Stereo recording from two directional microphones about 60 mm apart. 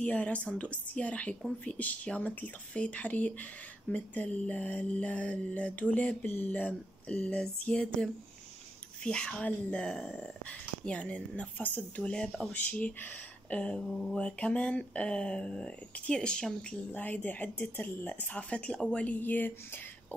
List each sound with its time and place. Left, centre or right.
0.0 s speech: left
6.2 s speech: left
13.8 s mantra: centre
14.1 s speech: centre
16.9 s speech: left
19.1 s speech: left